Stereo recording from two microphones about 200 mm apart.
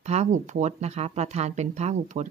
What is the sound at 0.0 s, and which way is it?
Speech, 35° right (ahead or behind).